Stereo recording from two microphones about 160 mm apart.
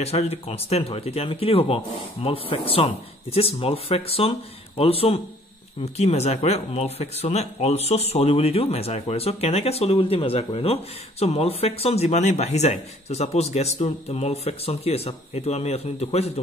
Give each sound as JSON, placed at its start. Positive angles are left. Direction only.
{"t": 0.0, "sound": "speech", "side_deg": 40}